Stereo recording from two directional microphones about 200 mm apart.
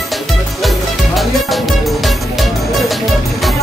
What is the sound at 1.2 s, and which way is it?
Music, centre (ahead or behind).